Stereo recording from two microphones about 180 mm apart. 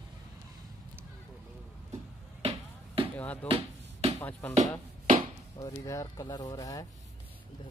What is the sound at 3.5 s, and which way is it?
Basketball bounce, 35° right (ahead or behind).